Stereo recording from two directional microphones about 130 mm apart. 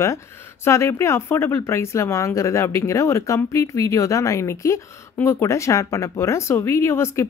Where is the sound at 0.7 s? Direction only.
20° left (ahead or behind).